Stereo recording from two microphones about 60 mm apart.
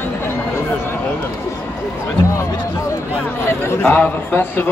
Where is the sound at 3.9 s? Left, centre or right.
Left.